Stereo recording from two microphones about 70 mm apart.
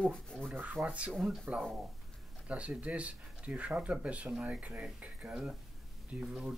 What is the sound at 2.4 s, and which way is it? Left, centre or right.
Speech, centre.